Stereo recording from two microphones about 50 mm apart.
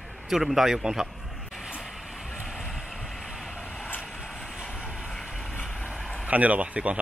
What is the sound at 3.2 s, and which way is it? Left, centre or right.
Vehicle, centre.